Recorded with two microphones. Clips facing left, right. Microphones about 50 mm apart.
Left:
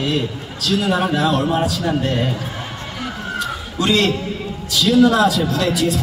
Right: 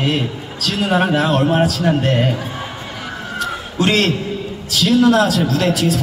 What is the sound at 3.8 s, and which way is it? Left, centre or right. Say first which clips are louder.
Speech: right 1 dB; right.